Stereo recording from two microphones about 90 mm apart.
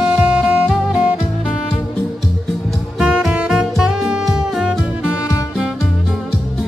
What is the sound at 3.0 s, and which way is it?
Music, 5° right (ahead or behind).